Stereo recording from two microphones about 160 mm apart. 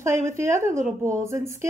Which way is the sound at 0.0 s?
15° right (ahead or behind).